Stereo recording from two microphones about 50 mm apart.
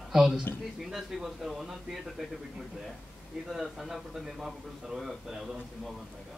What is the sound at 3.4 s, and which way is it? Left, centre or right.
Speech, centre.